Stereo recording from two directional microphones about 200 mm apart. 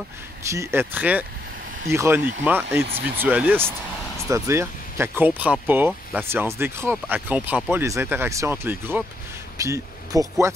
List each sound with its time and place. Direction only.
0.5 s speech: 15° right (ahead or behind)